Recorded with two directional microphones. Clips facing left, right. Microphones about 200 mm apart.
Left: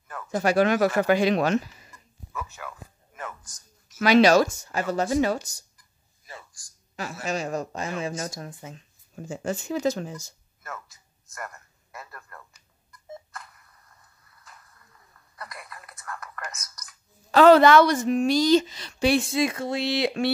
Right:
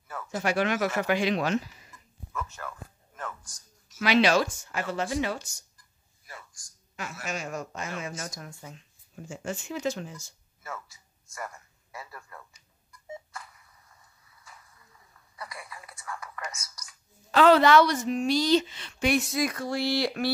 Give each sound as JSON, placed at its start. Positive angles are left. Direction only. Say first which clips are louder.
{"t": 0.4, "sound": "a woman's voice", "louder": "left 6 dB", "side_deg": 40}
{"t": 2.3, "sound": "a sound", "louder": "even", "side_deg": 5}
{"t": 4.0, "sound": "a woman's voice", "louder": "left 5 dB", "side_deg": 45}
{"t": 8.5, "sound": "speech", "louder": "left 4 dB", "side_deg": 20}
{"t": 8.7, "sound": "a woman's voice", "louder": "left 4 dB", "side_deg": 40}
{"t": 10.6, "sound": "a sound", "louder": "even", "side_deg": -10}
{"t": 16.5, "sound": "speech", "louder": "left 1 dB", "side_deg": -10}
{"t": 17.3, "sound": "a woman's voice", "louder": "left 4 dB", "side_deg": 45}